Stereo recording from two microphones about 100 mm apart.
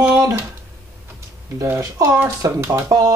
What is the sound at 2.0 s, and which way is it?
Speech, 25° right (ahead or behind).